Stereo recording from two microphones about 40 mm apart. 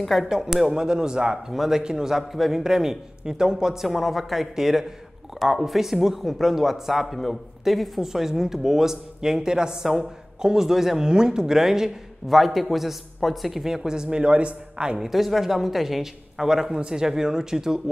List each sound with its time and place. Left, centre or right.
0.0 s speech: centre
1.5 s speech: centre
1.8 s speech: centre
3.8 s speech: centre
12.4 s speech: centre; by 15.0 s right
15.0 s speech: centre